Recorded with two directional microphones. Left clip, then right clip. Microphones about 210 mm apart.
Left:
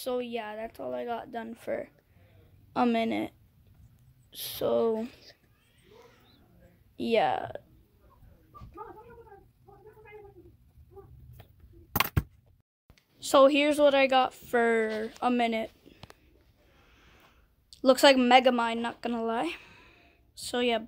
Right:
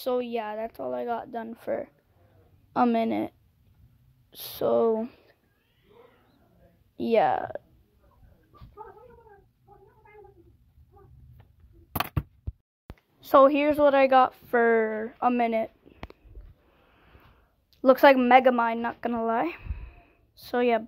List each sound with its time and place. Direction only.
0.0 s speech: 30° right (ahead or behind); by 5.1 s 15° right (ahead or behind)
7.0 s speech: 15° right (ahead or behind)
12.9 s speech: 5° right (ahead or behind)
16.8 s a sound: centre (ahead or behind)
17.6 s a woman's voice: 10° right (ahead or behind)